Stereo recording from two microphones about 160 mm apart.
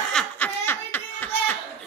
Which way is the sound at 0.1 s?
5° left (ahead or behind).